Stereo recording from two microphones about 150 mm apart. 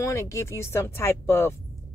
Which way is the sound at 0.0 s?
20° left (ahead or behind).